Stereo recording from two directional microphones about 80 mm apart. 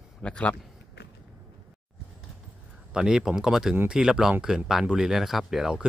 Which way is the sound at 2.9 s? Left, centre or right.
Centre.